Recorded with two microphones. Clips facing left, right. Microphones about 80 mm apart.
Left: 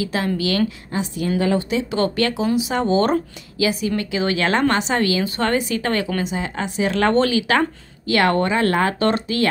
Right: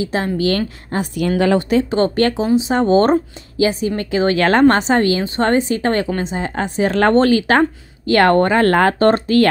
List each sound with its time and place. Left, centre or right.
0.0 s speech: right
1.1 s a woman's voice: right
1.9 s speech: right